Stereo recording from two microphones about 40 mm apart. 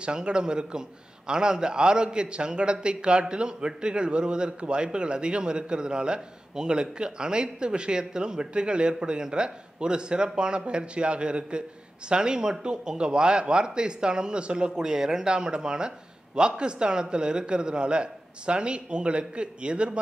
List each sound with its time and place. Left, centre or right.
0.0 s a man's voice: right